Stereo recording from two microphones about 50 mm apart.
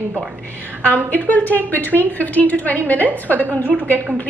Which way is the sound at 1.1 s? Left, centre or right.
Left.